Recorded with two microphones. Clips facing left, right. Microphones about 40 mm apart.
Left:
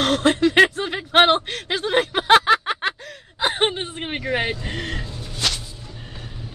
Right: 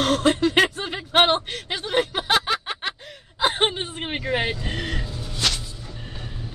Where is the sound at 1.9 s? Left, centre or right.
Left.